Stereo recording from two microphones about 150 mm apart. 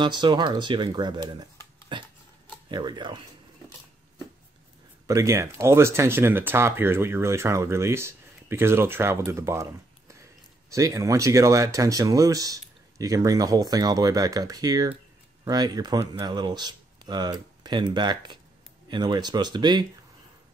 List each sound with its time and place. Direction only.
0.0 s speech: 30° right (ahead or behind)
1.9 s a sound: 30° right (ahead or behind)
2.7 s speech: 30° right (ahead or behind)
5.0 s speech: 20° right (ahead or behind)